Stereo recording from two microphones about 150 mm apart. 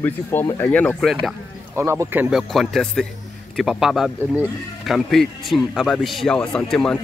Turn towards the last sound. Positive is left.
turn(degrees=5)  # may be behind; listen again after turning